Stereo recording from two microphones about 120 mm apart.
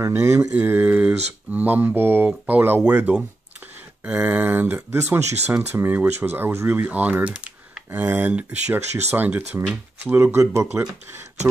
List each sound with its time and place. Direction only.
0.0 s speech: 25° right (ahead or behind)
5.2 s speech: 65° right (ahead or behind)
5.5 s speech: 15° right (ahead or behind)